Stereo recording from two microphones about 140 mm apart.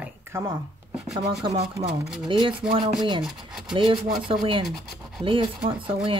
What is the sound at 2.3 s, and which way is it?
Speech, 35° right (ahead or behind).